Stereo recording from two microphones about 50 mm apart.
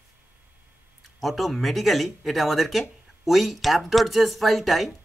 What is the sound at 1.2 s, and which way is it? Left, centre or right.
Speech, centre.